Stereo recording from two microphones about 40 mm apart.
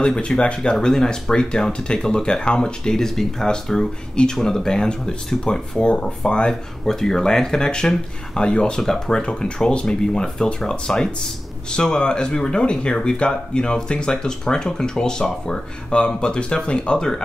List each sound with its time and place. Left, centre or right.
0.0 s speech: left
0.7 s speech: centre
2.9 s speech: centre; by 6.5 s left
6.9 s speech: centre
8.7 s speech: centre